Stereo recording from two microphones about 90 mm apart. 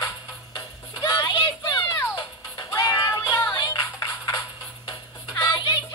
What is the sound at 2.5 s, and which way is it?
Music, 45° left (ahead or behind).